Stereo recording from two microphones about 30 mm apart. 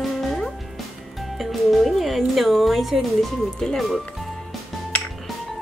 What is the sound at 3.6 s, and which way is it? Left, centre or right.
Speech, centre.